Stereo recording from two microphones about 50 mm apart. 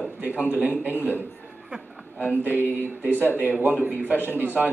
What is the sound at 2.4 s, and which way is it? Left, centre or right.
Speech, right.